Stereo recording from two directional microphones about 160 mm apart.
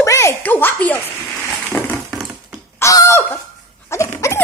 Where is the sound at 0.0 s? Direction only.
20° left (ahead or behind).